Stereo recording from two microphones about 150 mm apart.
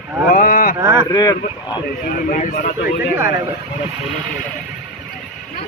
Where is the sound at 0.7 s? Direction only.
20° right (ahead or behind).